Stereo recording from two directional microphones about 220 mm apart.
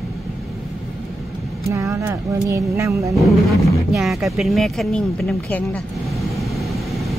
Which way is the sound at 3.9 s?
Centre (ahead or behind).